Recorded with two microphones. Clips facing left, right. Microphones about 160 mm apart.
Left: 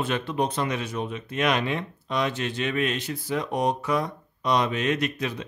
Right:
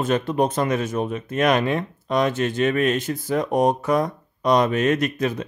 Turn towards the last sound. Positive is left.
turn(degrees=-45)  # may be behind; listen again after turning